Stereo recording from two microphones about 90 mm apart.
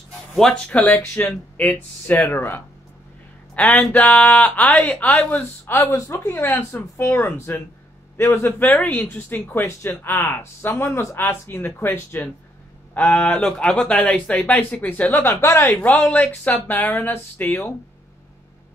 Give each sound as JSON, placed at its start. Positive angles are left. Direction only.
{"t": 0.4, "sound": "speech", "side_deg": 5}
{"t": 0.8, "sound": "speech", "side_deg": 20}
{"t": 5.9, "sound": "speech", "side_deg": 35}
{"t": 15.7, "sound": "speech", "side_deg": 15}